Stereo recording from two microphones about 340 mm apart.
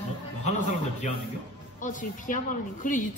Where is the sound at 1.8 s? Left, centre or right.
Left.